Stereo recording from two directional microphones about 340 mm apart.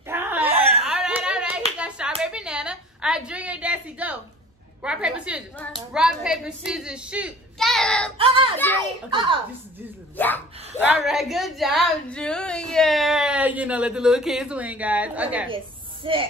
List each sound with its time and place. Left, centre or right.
0.0 s wail: centre
0.5 s whimper: centre
0.8 s a sound: centre
1.8 s clapping: centre
2.2 s a sound: centre
4.8 s speech: centre
9.1 s a woman's voice: centre
10.1 s speech: centre
15.5 s snake: centre